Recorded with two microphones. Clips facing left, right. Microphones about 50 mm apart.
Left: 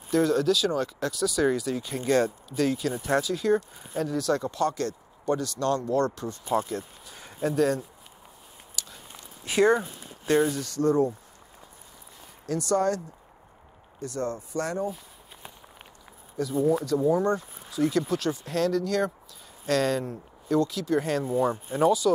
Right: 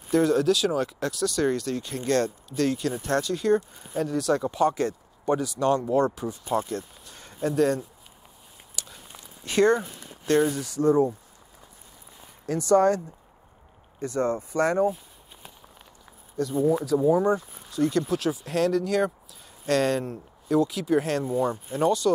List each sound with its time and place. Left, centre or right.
0.1 s speech: centre
4.5 s speech: centre
6.5 s speech: centre
8.7 s walk: centre
9.4 s speech: centre
10.4 s speech: centre
12.4 s speech: right
14.0 s speech: right
16.3 s speech: centre
17.4 s speech: centre